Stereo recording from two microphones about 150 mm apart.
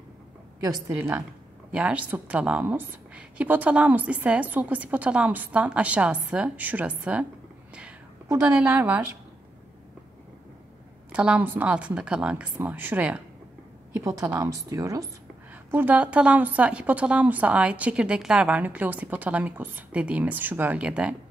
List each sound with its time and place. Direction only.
0.6 s a woman's voice: 20° right (ahead or behind)
8.3 s a woman's voice: 10° right (ahead or behind)
11.1 s a woman's voice: 10° right (ahead or behind)